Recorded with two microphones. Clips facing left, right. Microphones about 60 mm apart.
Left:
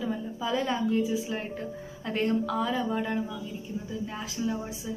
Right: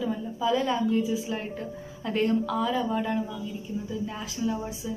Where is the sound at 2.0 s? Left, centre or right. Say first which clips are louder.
Right 2 dB; left.